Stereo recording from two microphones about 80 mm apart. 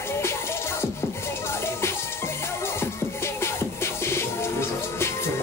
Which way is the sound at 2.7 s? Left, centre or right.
Left.